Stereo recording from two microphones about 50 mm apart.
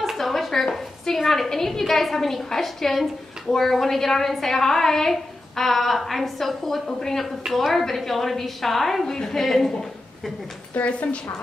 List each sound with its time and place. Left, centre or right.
0.1 s a sound: centre
0.7 s a woman's voice: centre
10.7 s a woman's voice: left